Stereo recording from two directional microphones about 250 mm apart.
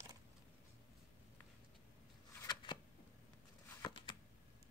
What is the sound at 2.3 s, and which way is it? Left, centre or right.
Shuffling cards, centre.